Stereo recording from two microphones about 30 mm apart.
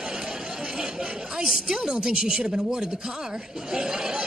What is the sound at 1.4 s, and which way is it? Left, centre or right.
Speech, centre.